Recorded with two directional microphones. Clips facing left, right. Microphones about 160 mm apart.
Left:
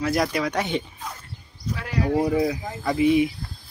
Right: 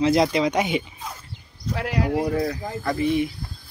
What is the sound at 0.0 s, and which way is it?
Speech, 25° right (ahead or behind).